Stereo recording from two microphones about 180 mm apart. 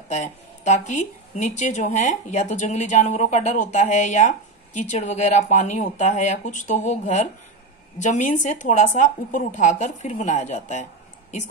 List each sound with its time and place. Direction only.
0.1 s speech: 40° left (ahead or behind)